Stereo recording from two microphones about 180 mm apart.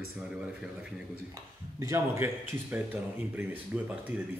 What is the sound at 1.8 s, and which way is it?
Speech, 15° right (ahead or behind).